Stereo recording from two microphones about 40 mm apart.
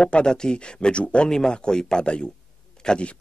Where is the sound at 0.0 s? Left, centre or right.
Left.